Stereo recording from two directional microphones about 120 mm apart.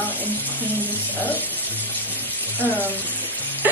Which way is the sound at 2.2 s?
15° left (ahead or behind).